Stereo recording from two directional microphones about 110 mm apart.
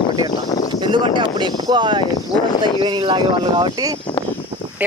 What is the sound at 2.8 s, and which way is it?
Speech, 45° right (ahead or behind).